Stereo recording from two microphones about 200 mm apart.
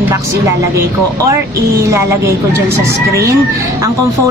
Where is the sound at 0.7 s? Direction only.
15° right (ahead or behind).